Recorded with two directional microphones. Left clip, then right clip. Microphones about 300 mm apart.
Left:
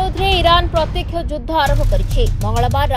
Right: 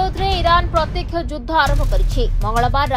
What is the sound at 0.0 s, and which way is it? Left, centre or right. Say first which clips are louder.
Music: left 3 dB; left.